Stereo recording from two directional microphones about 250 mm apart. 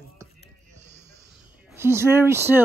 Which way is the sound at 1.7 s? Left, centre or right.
Centre.